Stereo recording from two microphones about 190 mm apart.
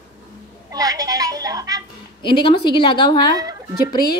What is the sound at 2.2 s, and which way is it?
A woman's voice, 25° left (ahead or behind).